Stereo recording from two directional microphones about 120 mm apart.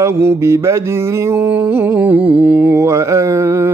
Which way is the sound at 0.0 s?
20° right (ahead or behind).